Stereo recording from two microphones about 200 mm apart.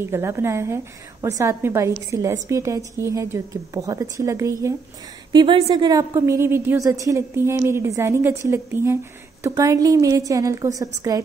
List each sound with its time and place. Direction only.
0.0 s a woman's voice: 15° right (ahead or behind)